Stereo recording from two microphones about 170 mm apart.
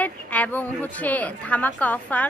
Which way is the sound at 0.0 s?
10° left (ahead or behind).